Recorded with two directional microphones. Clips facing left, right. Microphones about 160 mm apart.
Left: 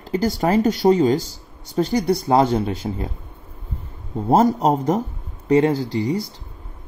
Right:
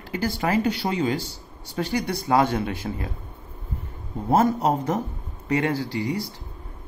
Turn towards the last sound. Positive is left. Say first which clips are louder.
# left 5 dB
turn(degrees=35)  # may be behind; listen again after turning